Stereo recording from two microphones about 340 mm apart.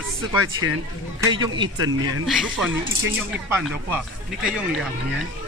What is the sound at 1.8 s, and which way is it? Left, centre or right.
Speech, right.